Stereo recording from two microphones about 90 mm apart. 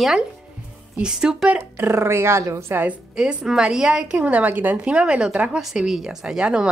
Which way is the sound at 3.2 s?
10° right (ahead or behind).